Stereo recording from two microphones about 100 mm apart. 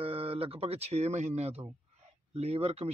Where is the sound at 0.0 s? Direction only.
75° right (ahead or behind).